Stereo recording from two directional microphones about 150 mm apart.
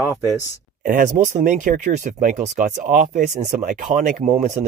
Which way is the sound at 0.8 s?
60° right (ahead or behind).